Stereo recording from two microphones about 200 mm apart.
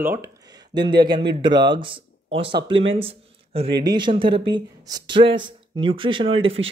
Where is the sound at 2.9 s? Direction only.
30° right (ahead or behind).